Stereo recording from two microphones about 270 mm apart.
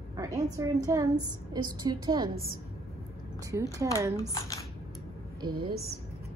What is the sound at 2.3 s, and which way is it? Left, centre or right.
Speech, right.